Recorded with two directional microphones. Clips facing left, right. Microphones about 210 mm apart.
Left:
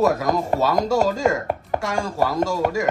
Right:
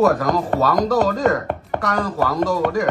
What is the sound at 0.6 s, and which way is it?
Speech, 25° left (ahead or behind).